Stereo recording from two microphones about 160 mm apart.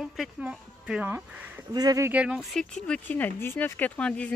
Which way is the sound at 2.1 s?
10° right (ahead or behind).